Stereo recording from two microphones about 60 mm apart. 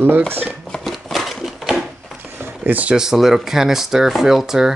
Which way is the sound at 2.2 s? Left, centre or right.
Right.